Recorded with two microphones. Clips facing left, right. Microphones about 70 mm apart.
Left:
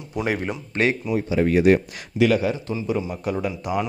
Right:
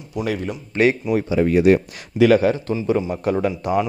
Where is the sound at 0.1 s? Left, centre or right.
Left.